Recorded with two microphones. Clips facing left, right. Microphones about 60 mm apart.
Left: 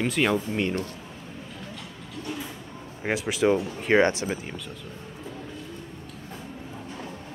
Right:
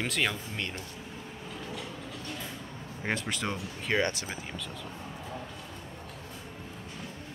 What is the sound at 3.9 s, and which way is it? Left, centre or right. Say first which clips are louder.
Speech: left 8 dB; left.